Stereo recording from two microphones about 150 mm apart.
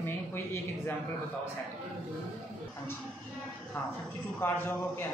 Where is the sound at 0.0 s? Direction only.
15° left (ahead or behind).